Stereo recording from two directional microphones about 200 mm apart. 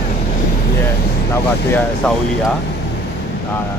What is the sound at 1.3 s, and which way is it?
Speech, 10° left (ahead or behind).